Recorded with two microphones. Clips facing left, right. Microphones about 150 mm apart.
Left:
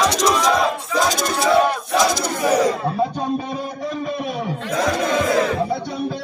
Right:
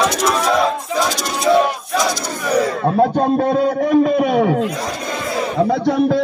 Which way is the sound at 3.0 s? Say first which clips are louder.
Right 7 dB; 70° right (ahead or behind).